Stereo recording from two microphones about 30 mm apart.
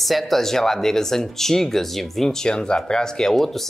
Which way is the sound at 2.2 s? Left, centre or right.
Left.